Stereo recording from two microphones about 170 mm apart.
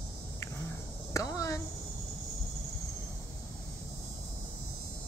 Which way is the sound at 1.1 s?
20° left (ahead or behind).